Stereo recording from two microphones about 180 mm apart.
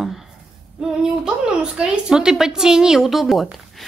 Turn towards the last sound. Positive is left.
turn(degrees=0)  # may be behind; listen again after turning